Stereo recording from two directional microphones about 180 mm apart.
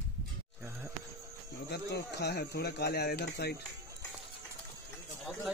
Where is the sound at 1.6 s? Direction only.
65° left (ahead or behind).